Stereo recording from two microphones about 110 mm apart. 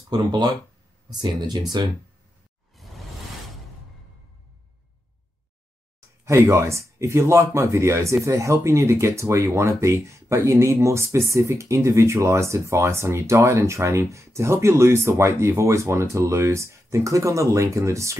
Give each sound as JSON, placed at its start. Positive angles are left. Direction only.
{"t": 0.1, "sound": "speech", "side_deg": -40}
{"t": 2.8, "sound": "whoosh", "side_deg": 0}
{"t": 6.2, "sound": "speech", "side_deg": -25}